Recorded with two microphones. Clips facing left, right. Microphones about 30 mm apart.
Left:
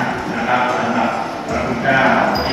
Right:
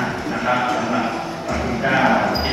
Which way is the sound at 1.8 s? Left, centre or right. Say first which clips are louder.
Left 3 dB; centre.